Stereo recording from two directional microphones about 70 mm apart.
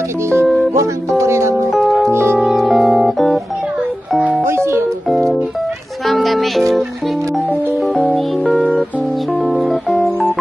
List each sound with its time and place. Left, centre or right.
0.7 s music: right
1.7 s music: centre
4.5 s music: right
5.1 s music: centre
7.8 s music: centre
9.4 s music: centre
9.9 s organ: centre